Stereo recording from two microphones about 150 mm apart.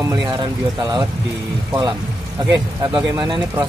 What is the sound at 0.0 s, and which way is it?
Speech, 20° right (ahead or behind).